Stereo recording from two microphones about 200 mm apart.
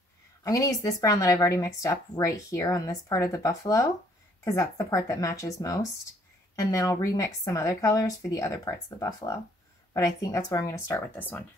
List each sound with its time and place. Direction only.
0.4 s speech: 15° left (ahead or behind)